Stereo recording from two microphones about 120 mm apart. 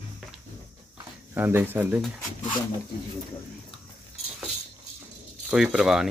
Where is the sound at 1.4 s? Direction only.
20° right (ahead or behind).